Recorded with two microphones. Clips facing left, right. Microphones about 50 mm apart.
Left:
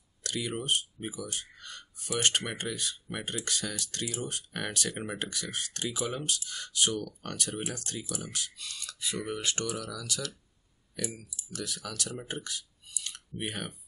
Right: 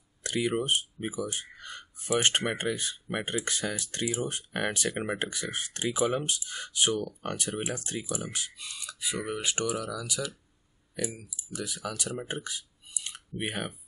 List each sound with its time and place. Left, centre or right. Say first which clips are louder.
0.2 s speech: right 6 dB; right
11.5 s speech: right 3 dB; centre